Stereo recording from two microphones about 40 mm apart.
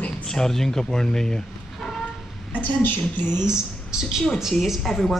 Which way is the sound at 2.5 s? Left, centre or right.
Left.